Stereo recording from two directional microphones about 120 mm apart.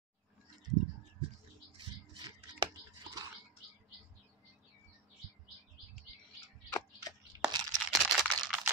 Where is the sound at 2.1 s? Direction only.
35° right (ahead or behind).